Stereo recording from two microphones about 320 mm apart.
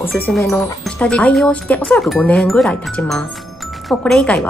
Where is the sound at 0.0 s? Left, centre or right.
Centre.